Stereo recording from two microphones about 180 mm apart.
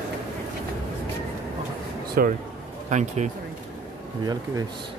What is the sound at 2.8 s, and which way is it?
Speech, 40° right (ahead or behind).